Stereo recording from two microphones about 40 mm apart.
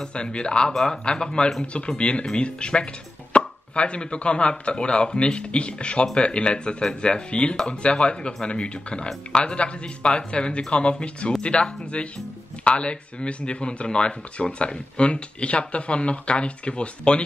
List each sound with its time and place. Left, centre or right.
0.0 s speech: left